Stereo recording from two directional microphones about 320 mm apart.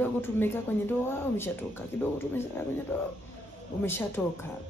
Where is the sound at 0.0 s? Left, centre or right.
Centre.